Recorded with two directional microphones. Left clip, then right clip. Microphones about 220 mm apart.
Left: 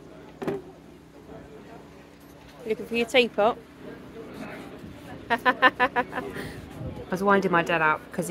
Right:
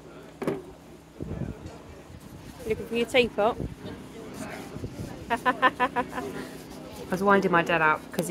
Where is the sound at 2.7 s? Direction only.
5° left (ahead or behind).